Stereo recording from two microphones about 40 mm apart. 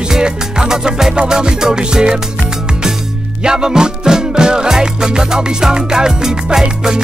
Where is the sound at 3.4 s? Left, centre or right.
Centre.